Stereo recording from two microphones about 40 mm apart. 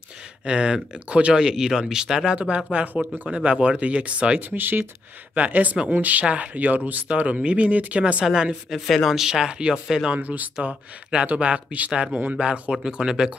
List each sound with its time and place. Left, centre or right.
0.5 s speech: right
2.3 s speech: right
4.5 s speech: right
5.3 s speech: right
6.2 s speech: right
8.0 s speech: right
8.8 s speech: centre
9.1 s speech: centre
10.0 s speech: right
11.2 s speech: right
11.9 s speech: right
12.8 s speech: centre